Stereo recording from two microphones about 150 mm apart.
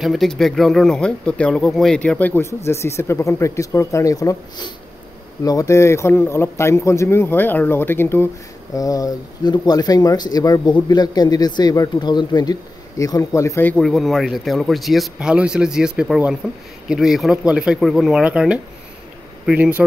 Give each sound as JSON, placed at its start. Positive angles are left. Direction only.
{"t": 0.0, "sound": "speech", "side_deg": 0}
{"t": 13.7, "sound": "speech", "side_deg": 0}